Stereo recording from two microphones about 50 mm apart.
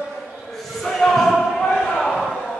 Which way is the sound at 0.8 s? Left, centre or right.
Centre.